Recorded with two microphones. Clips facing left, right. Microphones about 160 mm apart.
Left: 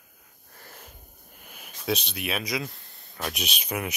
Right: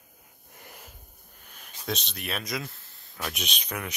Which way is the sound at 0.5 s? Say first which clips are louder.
Even; 15° right (ahead or behind).